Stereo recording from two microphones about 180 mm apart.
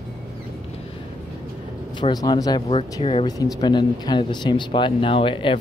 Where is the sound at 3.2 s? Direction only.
20° left (ahead or behind).